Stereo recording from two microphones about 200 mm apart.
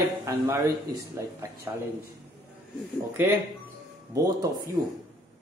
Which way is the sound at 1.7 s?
15° right (ahead or behind).